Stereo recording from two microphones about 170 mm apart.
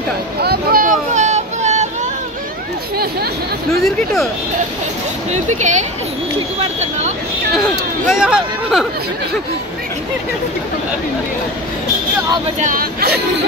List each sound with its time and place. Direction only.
0.4 s a sound: 65° right (ahead or behind); by 1.9 s 45° right (ahead or behind)
3.8 s speech: centre (ahead or behind)
5.3 s speech: 45° right (ahead or behind)
8.1 s speech: 5° right (ahead or behind)
12.5 s speech: 55° right (ahead or behind)